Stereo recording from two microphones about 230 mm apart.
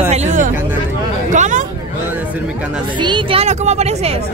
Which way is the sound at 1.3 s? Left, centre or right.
Right.